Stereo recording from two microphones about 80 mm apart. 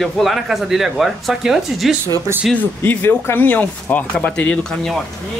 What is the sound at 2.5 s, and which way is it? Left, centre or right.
Speech, left.